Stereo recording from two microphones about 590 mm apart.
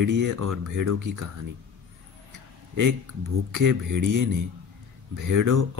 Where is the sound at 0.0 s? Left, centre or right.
Right.